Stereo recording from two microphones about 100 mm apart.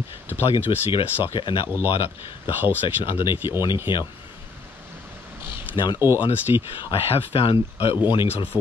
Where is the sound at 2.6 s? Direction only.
20° right (ahead or behind).